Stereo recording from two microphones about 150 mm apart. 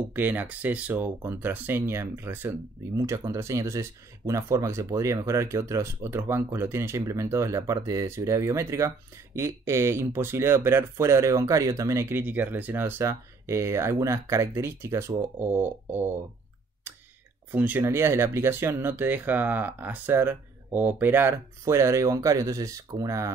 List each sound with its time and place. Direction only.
0.1 s speech: 10° right (ahead or behind)
16.9 s a sound: 10° right (ahead or behind)
17.5 s speech: 10° right (ahead or behind)